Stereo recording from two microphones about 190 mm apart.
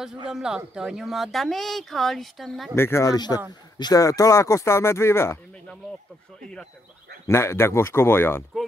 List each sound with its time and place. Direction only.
0.3 s speech: 5° right (ahead or behind)
2.7 s speech: 15° left (ahead or behind)
7.2 s speech: 15° left (ahead or behind)